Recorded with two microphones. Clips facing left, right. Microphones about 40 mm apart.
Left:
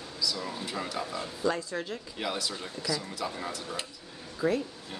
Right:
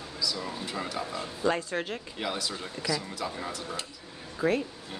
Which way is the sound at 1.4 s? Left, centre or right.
Right.